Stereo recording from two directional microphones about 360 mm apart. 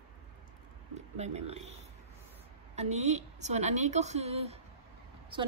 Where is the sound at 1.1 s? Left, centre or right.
Centre.